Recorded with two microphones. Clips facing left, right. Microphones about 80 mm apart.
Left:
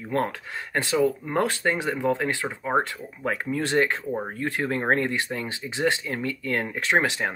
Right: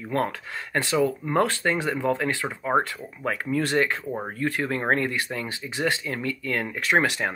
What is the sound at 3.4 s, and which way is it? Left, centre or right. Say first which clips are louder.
Speech: even; left.